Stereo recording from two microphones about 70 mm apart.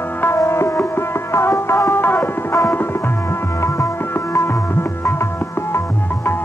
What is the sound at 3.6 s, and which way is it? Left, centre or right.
Music, left.